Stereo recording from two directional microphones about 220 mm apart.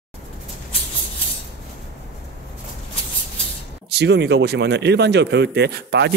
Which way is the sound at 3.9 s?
50° right (ahead or behind).